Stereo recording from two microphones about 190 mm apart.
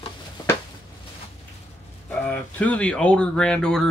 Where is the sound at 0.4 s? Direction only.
20° left (ahead or behind).